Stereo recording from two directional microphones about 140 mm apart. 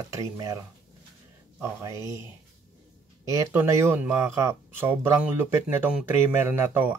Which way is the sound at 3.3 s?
20° right (ahead or behind).